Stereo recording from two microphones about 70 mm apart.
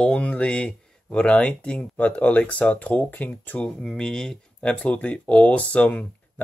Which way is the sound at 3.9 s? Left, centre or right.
Centre.